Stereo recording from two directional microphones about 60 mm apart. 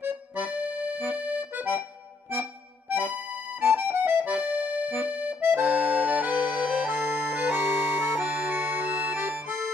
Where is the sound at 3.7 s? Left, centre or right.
Right.